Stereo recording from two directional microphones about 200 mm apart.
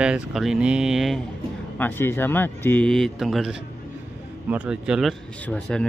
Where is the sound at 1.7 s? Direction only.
10° left (ahead or behind).